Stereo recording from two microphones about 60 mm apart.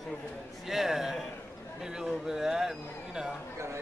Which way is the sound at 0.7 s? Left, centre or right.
Centre.